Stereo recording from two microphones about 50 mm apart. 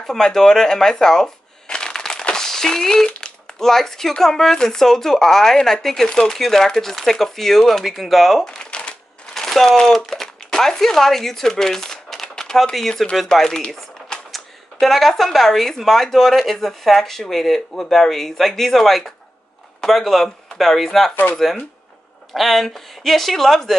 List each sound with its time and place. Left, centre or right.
0.0 s shuffling cards: centre
3.2 s speech: centre
8.5 s shuffling cards: centre
9.3 s a sound: centre
9.8 s speech: centre
14.3 s speech: centre
22.3 s speech: centre